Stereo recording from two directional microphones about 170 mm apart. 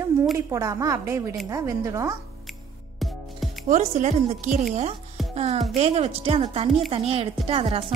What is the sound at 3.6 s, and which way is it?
A woman's voice, 45° right (ahead or behind).